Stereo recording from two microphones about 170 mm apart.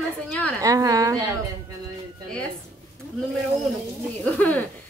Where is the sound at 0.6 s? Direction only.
20° right (ahead or behind).